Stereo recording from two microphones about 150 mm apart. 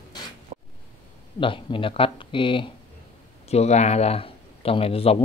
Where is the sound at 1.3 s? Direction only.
35° left (ahead or behind).